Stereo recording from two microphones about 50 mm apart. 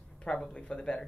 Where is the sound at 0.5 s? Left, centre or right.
Left.